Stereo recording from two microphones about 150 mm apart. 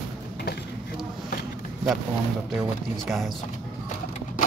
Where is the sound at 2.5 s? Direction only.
Centre (ahead or behind).